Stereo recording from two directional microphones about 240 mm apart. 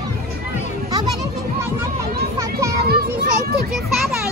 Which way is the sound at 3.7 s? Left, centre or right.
Centre.